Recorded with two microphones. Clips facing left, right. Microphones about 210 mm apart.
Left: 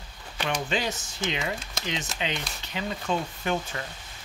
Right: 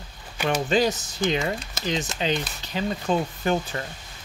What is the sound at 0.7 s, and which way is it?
Speech, 40° right (ahead or behind).